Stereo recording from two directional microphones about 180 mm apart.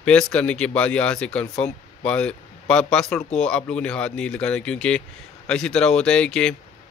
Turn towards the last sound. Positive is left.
turn(degrees=5)  # may be behind; listen again after turning